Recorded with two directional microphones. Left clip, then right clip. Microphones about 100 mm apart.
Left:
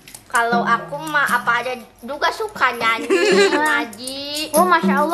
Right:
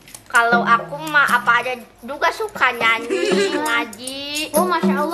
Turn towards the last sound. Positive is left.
turn(degrees=15)  # may be behind; listen again after turning